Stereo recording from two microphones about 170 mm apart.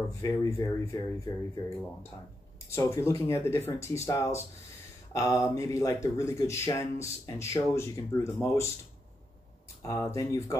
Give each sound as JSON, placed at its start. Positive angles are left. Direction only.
{"t": 0.1, "sound": "speech", "side_deg": 20}
{"t": 2.7, "sound": "speech", "side_deg": 15}
{"t": 9.8, "sound": "speech", "side_deg": 20}